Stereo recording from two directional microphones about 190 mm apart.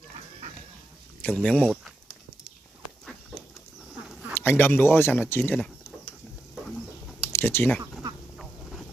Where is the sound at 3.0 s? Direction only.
Centre (ahead or behind).